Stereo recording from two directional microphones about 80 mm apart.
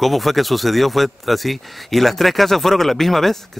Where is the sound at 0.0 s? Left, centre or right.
Centre.